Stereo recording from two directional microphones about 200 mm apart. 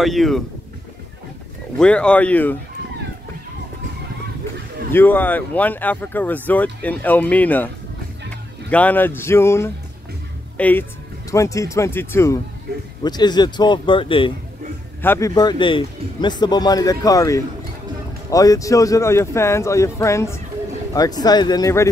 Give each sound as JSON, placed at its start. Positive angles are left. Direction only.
{"t": 0.0, "sound": "speech", "side_deg": 0}
{"t": 1.8, "sound": "speech", "side_deg": 5}
{"t": 4.9, "sound": "speech", "side_deg": 10}
{"t": 15.0, "sound": "speech", "side_deg": 15}